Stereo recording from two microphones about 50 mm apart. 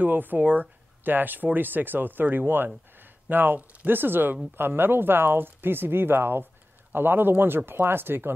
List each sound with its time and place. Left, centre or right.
0.0 s speech: right